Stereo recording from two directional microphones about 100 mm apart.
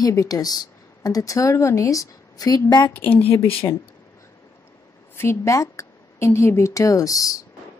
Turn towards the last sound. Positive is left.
turn(degrees=35)  # may be behind; listen again after turning